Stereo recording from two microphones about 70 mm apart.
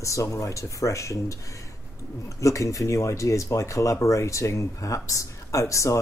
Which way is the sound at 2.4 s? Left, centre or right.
Left.